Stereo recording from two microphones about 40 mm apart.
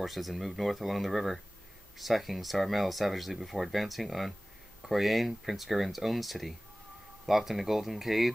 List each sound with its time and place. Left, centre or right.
0.0 s speech: centre